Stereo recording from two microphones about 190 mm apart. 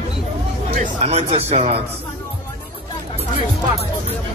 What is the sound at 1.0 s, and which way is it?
Speech, 35° right (ahead or behind).